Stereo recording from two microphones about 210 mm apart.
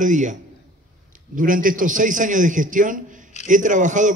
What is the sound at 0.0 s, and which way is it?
A man's voice, 35° right (ahead or behind).